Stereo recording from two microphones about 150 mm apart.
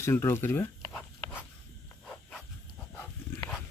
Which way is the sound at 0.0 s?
20° left (ahead or behind).